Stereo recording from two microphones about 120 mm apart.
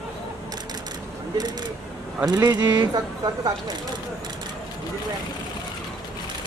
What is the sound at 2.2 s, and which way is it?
Speech, 35° right (ahead or behind).